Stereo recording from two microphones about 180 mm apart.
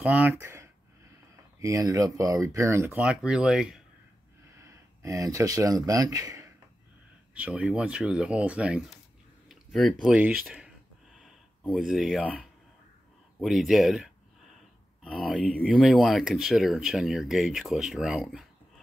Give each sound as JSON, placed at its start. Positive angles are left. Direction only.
{"t": 0.0, "sound": "speech", "side_deg": -10}
{"t": 4.6, "sound": "speech", "side_deg": -15}
{"t": 7.3, "sound": "speech", "side_deg": -5}
{"t": 9.5, "sound": "a sound", "side_deg": 0}
{"t": 10.0, "sound": "speech", "side_deg": -5}
{"t": 11.7, "sound": "speech", "side_deg": -5}